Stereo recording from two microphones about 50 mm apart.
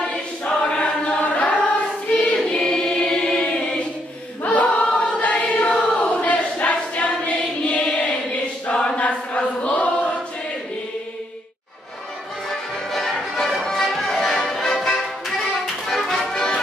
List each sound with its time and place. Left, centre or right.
0.1 s choir: left
2.3 s choir: centre
3.1 s a sound: centre
4.5 s choir: left
12.4 s music: centre